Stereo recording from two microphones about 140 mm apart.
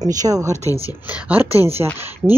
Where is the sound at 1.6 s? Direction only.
15° right (ahead or behind).